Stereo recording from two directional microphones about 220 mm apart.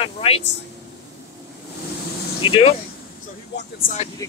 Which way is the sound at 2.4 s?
25° left (ahead or behind).